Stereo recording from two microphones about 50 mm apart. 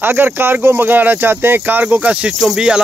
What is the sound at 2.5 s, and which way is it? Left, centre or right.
Speech, centre.